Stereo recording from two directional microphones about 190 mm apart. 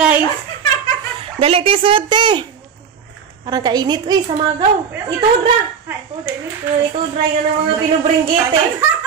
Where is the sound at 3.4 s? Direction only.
20° right (ahead or behind).